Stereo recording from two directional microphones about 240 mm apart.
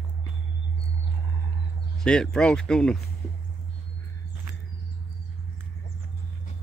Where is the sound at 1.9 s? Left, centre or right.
Centre.